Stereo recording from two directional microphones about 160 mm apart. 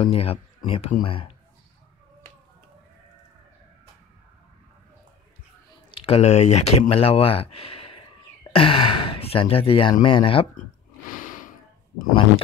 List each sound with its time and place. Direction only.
0.0 s speech: 35° left (ahead or behind)
5.9 s speech: 35° left (ahead or behind)
11.2 s gasp: 55° left (ahead or behind)